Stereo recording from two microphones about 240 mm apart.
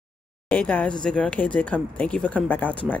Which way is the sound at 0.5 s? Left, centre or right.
Centre.